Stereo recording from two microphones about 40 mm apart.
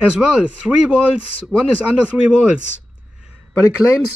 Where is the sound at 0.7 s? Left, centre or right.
Centre.